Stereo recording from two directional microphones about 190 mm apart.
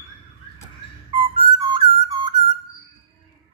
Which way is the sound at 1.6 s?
30° right (ahead or behind).